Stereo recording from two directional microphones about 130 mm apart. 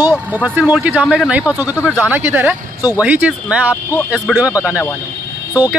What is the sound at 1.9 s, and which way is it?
Speech, 15° right (ahead or behind).